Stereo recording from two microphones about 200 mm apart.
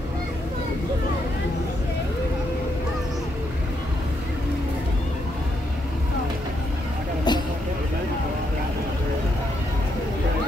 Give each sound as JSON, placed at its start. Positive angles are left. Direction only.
{"t": 7.3, "sound": "vehicle", "side_deg": 20}